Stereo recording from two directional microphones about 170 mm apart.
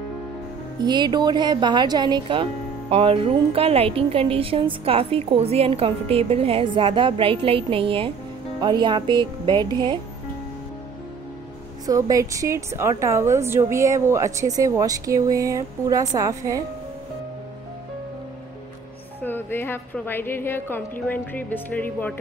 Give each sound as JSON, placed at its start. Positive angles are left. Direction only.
{"t": 0.8, "sound": "a woman's voice", "side_deg": -25}
{"t": 11.8, "sound": "a woman's voice", "side_deg": -20}
{"t": 19.2, "sound": "a woman's voice", "side_deg": 10}